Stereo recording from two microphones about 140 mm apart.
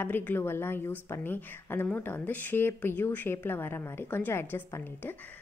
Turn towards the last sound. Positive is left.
turn(degrees=15)  # may be behind; listen again after turning